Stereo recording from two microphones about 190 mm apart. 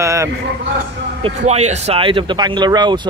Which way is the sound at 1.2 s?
35° right (ahead or behind).